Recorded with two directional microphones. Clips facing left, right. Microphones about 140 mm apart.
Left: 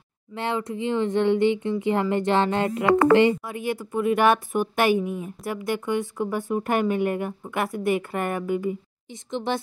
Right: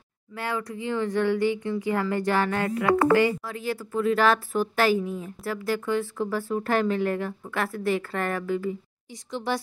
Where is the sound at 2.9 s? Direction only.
90° left.